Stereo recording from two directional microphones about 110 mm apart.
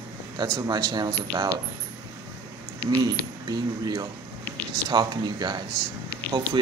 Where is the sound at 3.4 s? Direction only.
35° right (ahead or behind).